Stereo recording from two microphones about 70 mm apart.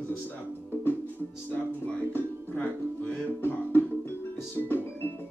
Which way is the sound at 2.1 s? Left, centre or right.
Left.